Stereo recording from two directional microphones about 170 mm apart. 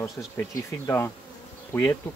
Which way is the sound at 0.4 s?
15° left (ahead or behind).